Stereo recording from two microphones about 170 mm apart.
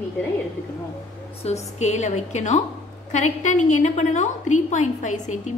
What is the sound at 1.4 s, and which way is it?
A woman's voice, 40° left (ahead or behind).